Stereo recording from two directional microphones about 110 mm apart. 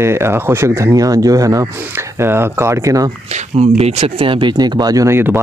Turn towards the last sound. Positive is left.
turn(degrees=-20)  # may be behind; listen again after turning